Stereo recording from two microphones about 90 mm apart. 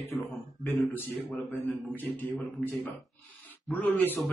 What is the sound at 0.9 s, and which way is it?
A man's voice, 20° left (ahead or behind).